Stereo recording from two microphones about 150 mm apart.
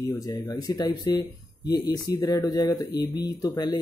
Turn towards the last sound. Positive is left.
turn(degrees=25)  # may be behind; listen again after turning